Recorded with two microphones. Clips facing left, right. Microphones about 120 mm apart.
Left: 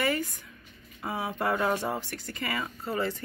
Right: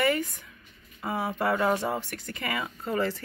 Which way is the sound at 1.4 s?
5° right (ahead or behind).